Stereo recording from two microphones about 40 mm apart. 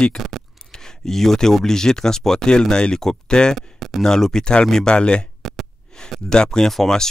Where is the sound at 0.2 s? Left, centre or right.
Centre.